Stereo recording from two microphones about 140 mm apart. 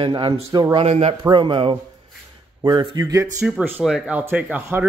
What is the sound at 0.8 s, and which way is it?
Speech, 50° right (ahead or behind).